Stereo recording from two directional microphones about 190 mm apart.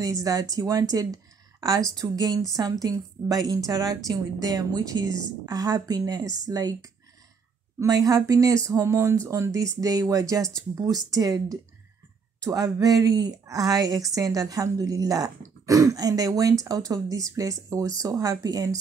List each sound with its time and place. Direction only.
0.0 s a woman's voice: 20° right (ahead or behind)